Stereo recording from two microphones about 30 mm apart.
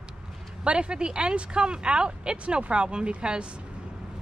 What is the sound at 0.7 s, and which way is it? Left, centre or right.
Speech, right.